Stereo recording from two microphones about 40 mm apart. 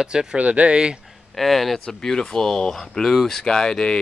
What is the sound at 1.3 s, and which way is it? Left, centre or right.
Speech, centre.